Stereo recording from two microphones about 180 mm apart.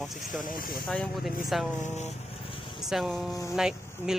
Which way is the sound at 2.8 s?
Centre (ahead or behind).